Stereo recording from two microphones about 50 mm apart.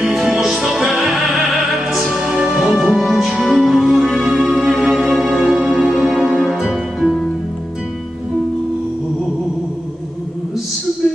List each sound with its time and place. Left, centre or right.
0.0 s music: centre
1.9 s music: centre
2.1 s music: centre
2.5 s music: centre